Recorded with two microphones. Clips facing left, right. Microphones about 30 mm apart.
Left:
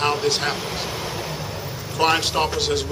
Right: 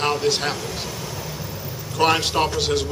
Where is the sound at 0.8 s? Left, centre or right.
Left.